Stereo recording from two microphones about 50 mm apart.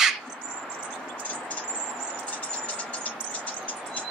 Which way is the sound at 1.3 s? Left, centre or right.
Left.